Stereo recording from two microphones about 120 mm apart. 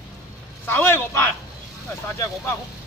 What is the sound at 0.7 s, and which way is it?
Speech, 20° left (ahead or behind).